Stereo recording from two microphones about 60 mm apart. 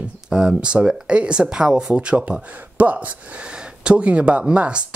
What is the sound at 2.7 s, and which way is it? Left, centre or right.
Speech, right.